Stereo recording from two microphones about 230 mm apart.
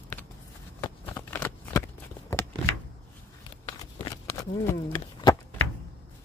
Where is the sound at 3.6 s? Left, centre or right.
Centre.